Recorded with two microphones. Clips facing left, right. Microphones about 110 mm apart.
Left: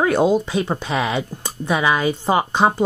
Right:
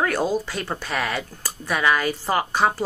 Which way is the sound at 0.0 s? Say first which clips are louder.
Left 6 dB; 20° left (ahead or behind).